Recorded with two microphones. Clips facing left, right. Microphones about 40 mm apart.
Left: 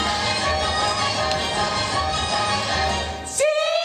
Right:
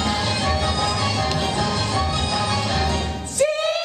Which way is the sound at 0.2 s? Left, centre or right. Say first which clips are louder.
Even; centre.